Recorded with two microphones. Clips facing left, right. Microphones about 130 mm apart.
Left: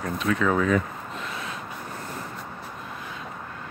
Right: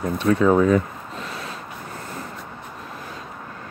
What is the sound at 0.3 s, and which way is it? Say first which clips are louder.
Speech: right 6 dB; 30° right (ahead or behind).